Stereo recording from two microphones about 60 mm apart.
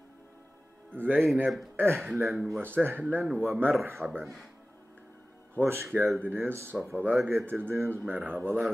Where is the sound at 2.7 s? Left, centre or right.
Right.